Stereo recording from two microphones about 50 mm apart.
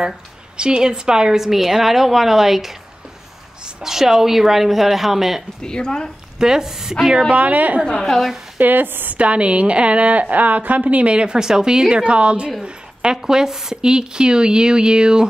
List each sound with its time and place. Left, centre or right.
0.6 s a woman's voice: centre
5.6 s a woman's voice: centre
6.3 s a woman's voice: centre
7.3 s a woman's voice: right
7.8 s a woman's voice: centre
8.5 s speech: right
9.1 s a woman's voice: right